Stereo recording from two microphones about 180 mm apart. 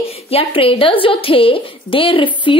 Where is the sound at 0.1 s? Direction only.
35° left (ahead or behind).